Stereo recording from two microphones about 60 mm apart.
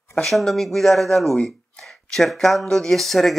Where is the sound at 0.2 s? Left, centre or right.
Centre.